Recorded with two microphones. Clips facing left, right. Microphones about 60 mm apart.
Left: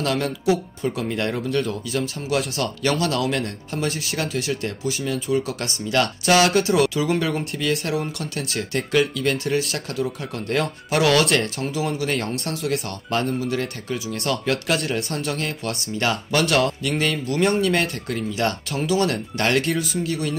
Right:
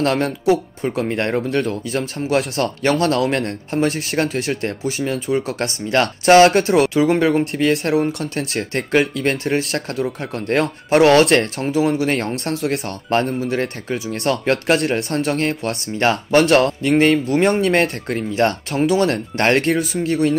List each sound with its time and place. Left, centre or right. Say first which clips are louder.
0.0 s speech: right 5 dB; right
12.3 s speech: right 4 dB; right
15.0 s speech: right 6 dB; right